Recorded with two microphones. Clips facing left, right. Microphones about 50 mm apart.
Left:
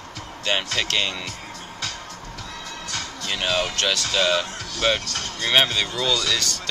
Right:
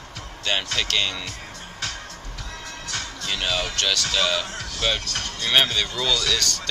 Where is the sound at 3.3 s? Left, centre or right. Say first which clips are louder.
Left 2 dB; centre.